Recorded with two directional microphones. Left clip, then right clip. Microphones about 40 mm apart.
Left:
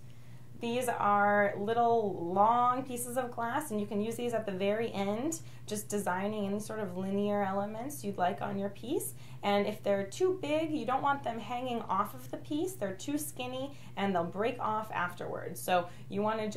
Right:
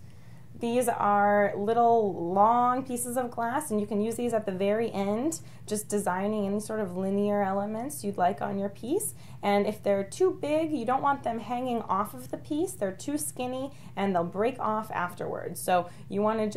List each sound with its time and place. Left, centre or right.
0.6 s a woman's voice: right
15.2 s speech: centre
15.5 s a woman's voice: right